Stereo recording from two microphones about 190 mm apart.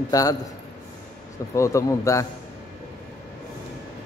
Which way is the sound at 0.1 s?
20° left (ahead or behind).